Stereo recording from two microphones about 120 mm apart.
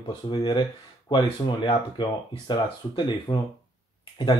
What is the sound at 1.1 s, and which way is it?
Speech, 40° left (ahead or behind).